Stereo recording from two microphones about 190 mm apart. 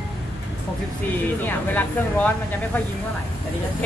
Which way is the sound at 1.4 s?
10° left (ahead or behind).